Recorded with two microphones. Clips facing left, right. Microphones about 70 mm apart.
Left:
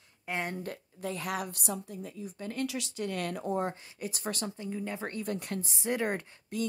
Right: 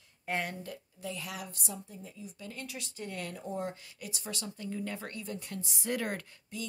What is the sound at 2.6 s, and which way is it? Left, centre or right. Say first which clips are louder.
Speech: left 9 dB; left.